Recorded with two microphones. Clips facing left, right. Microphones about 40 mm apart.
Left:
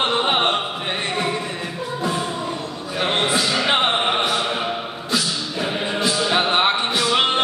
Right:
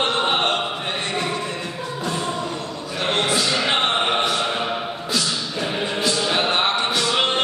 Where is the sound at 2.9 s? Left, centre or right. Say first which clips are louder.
Left 1 dB; centre.